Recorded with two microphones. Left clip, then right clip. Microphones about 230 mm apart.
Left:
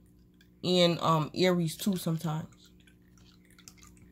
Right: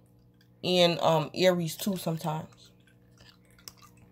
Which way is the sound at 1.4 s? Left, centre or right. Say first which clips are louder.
Right 4 dB; right.